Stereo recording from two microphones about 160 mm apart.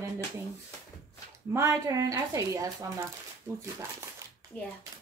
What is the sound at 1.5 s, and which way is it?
Speech, 20° right (ahead or behind).